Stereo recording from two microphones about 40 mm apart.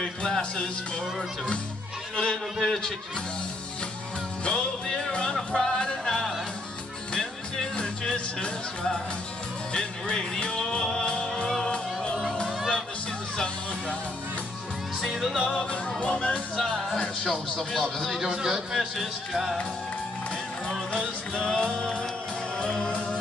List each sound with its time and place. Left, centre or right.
0.0 s speech: left
2.1 s speech: centre
4.5 s music: centre
7.7 s music: left
15.0 s music: centre
15.7 s music: left
17.3 s speech: centre
18.0 s music: centre
21.5 s music: left